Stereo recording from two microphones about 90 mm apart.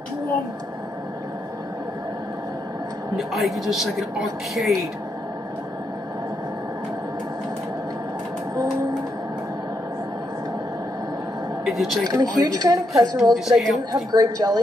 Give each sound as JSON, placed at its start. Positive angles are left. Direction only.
{"t": 3.2, "sound": "a woman's voice", "side_deg": 0}
{"t": 11.6, "sound": "a woman's voice", "side_deg": 0}
{"t": 12.1, "sound": "speech", "side_deg": -50}
{"t": 13.2, "sound": "a woman's voice", "side_deg": 0}
{"t": 14.1, "sound": "speech", "side_deg": -45}